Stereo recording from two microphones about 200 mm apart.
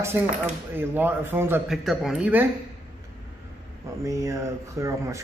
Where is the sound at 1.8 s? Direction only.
Centre (ahead or behind).